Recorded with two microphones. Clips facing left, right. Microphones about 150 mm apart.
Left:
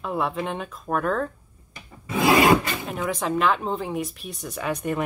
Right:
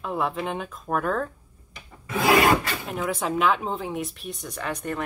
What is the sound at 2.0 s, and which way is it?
Filing, 20° left (ahead or behind).